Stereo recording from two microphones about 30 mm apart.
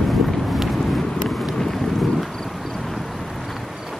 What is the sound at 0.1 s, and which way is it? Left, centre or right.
Vehicle, centre.